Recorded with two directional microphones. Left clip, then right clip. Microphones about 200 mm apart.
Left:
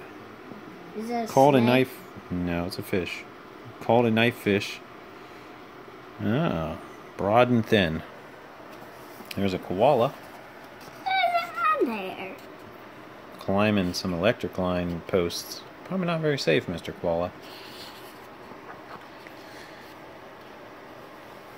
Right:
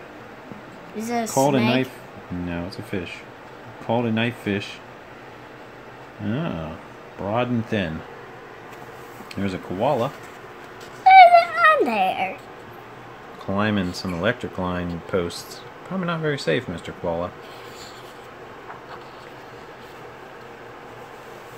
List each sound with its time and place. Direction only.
1.3 s speech: 30° left (ahead or behind)
6.2 s speech: 35° left (ahead or behind)
9.3 s speech: 25° left (ahead or behind)
11.1 s a sound: 45° right (ahead or behind)
13.6 s speech: 20° left (ahead or behind)